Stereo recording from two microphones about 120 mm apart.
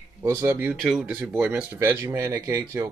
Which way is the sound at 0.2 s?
20° right (ahead or behind).